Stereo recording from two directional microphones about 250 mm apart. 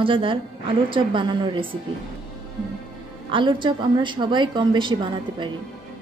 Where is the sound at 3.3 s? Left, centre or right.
Centre.